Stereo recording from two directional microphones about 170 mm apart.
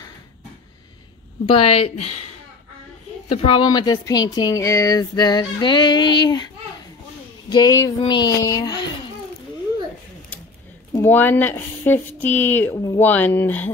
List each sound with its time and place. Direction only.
1.5 s a woman's voice: 35° left (ahead or behind)
3.3 s speech: 30° left (ahead or behind)
11.1 s speech: 10° left (ahead or behind)
12.7 s speech: 20° left (ahead or behind)
13.0 s speech: 10° left (ahead or behind)